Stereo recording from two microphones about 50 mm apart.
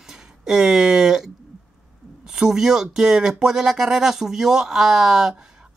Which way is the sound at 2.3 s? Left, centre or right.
Centre.